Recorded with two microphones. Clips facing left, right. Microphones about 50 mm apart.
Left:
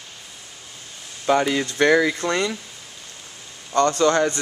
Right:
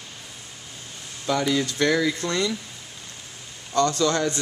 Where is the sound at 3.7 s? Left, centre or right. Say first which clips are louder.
Left 4 dB; left.